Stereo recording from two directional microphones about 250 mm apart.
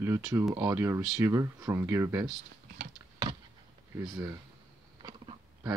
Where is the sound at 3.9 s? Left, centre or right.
Centre.